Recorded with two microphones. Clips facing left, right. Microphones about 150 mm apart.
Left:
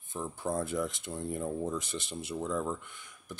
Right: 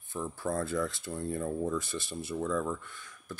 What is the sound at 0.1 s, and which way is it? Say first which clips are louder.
Speech: right 1 dB; 20° left (ahead or behind).